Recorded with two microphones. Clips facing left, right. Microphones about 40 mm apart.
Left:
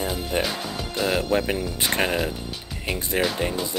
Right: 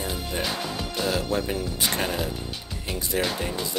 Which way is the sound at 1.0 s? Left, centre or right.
Left.